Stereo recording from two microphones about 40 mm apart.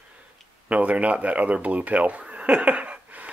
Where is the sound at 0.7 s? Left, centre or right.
Right.